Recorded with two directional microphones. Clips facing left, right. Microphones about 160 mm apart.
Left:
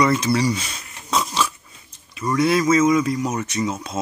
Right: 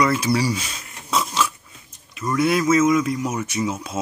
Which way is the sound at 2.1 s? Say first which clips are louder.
Left 1 dB; centre (ahead or behind).